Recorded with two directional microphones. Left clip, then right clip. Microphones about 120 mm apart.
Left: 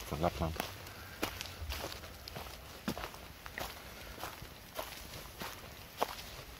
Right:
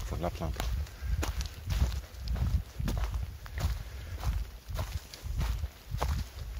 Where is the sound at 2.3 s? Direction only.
15° left (ahead or behind).